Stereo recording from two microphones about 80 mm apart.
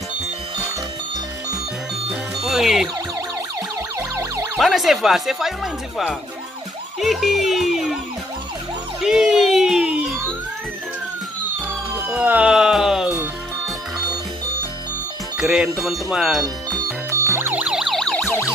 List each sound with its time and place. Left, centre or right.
2.4 s music: centre
4.6 s speech: centre
9.0 s a sound: centre
12.1 s speech: centre
15.3 s speech: centre
17.1 s music: right
17.6 s emergency vehicle: centre
18.2 s emergency vehicle: left